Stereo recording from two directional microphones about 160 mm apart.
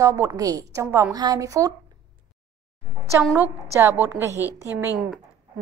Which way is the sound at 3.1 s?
15° right (ahead or behind).